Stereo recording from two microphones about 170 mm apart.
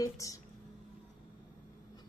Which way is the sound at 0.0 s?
20° left (ahead or behind).